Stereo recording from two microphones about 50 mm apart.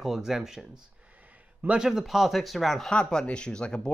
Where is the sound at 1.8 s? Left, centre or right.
Centre.